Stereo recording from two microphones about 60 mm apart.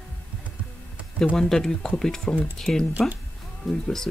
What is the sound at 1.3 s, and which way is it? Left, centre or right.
Speech, centre.